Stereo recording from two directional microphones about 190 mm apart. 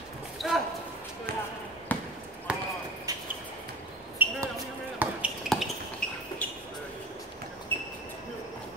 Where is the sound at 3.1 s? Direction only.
20° right (ahead or behind).